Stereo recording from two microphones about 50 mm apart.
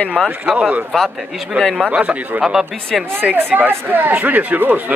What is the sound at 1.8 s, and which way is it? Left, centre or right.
Speech, right.